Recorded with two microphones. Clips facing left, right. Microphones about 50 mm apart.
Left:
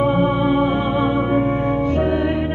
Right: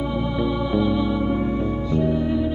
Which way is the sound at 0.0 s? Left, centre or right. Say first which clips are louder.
Left 7 dB; left.